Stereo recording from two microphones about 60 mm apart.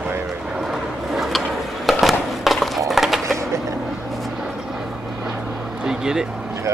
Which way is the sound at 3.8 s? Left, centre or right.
Centre.